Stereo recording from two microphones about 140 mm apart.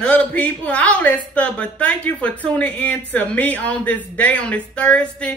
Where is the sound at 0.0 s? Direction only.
10° left (ahead or behind).